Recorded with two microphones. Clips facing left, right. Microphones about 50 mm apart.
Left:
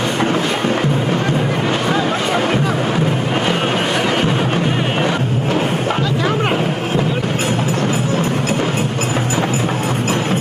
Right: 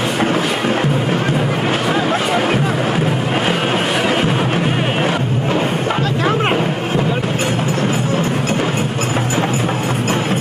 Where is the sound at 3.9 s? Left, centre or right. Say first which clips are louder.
Right 1 dB; centre.